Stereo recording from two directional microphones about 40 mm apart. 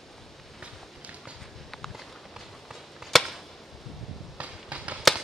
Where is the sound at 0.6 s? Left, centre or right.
Right.